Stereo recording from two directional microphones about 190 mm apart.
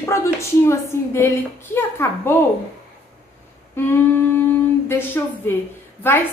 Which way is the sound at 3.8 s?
10° left (ahead or behind).